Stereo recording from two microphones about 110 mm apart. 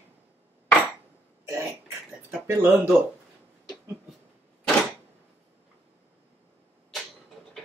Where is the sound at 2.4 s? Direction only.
20° right (ahead or behind).